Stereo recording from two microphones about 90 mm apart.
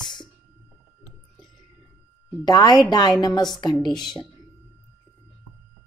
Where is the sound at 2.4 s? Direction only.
50° left (ahead or behind).